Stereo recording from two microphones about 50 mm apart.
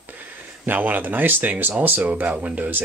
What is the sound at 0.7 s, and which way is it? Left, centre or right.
Speech, right.